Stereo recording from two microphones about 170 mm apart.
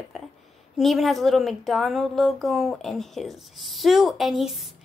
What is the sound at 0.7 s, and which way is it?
Speech, centre (ahead or behind).